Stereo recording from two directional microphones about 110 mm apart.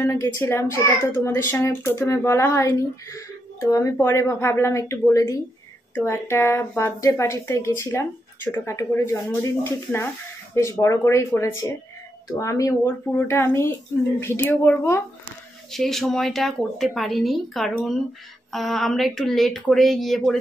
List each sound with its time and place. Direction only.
0.0 s a child's voice: 25° left (ahead or behind)
15.7 s speech: 5° left (ahead or behind)